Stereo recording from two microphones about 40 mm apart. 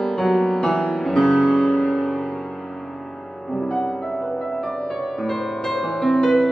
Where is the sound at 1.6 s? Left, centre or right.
Left.